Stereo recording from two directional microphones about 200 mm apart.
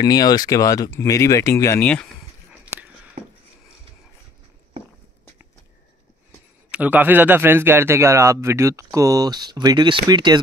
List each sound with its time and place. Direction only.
0.0 s speech: 20° left (ahead or behind)
2.6 s a sound: 5° right (ahead or behind)
6.7 s a man's voice: 10° right (ahead or behind)